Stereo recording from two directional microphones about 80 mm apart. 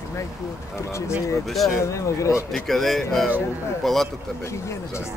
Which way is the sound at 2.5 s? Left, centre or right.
Centre.